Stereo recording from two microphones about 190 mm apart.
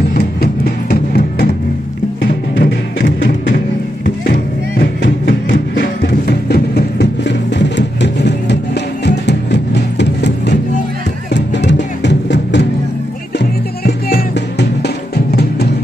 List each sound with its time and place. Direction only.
0.1 s music: 50° left (ahead or behind)
2.6 s music: 65° left (ahead or behind)
5.5 s music: 60° left (ahead or behind)